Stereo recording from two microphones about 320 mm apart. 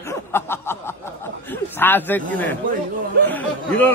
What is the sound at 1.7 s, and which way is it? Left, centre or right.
Speech, centre.